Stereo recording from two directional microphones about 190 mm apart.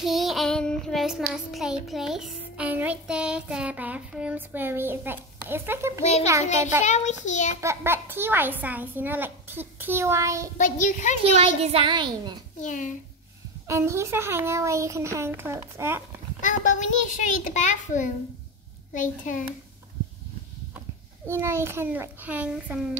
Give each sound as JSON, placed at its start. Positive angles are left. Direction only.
{"t": 0.0, "sound": "child singing", "side_deg": 0}
{"t": 6.8, "sound": "a child's voice", "side_deg": 40}
{"t": 7.6, "sound": "a child's voice", "side_deg": -10}
{"t": 10.6, "sound": "a child's voice", "side_deg": 45}
{"t": 11.3, "sound": "speech", "side_deg": -30}
{"t": 12.6, "sound": "a child's voice", "side_deg": 40}
{"t": 13.7, "sound": "a child's voice", "side_deg": -15}
{"t": 16.3, "sound": "a child's voice", "side_deg": 40}
{"t": 21.3, "sound": "a child's voice", "side_deg": -15}